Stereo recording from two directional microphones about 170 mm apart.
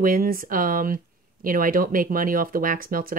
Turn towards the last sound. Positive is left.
turn(degrees=-55)  # may be behind; listen again after turning